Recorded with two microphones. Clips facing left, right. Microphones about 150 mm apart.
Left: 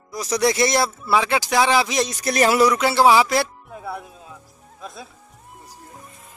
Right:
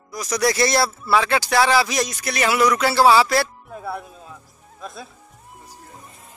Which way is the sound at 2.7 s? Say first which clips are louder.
Even; 20° left (ahead or behind).